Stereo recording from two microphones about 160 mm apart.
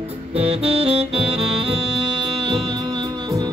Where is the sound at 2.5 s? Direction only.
30° right (ahead or behind).